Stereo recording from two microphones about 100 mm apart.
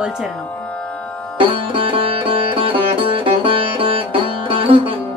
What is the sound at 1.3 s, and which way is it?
Sitar, 60° right (ahead or behind).